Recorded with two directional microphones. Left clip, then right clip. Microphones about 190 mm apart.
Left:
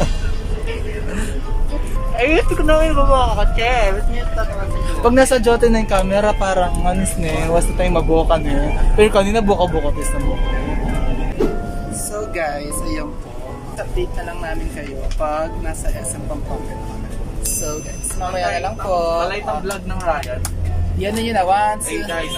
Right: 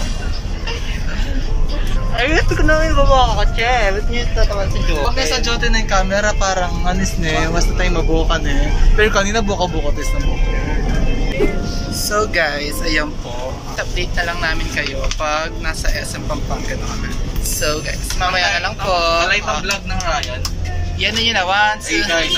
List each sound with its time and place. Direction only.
2.1 s speech: 15° left (ahead or behind)
5.1 s speech: 40° left (ahead or behind)
5.9 s speech: 20° left (ahead or behind)
11.4 s music: centre (ahead or behind)
12.4 s speech: 10° left (ahead or behind)
18.3 s speech: 30° left (ahead or behind)
21.0 s speech: 30° left (ahead or behind)